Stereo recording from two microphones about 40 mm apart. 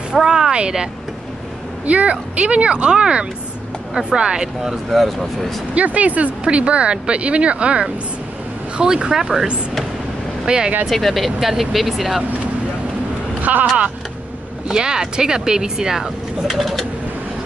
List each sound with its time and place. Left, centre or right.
0.2 s speech: centre
1.9 s speech: right
4.6 s speech: centre
5.8 s speech: right; by 9.5 s centre
10.4 s speech: centre
10.9 s speech: centre
13.4 s vehicle: right
14.7 s speech: centre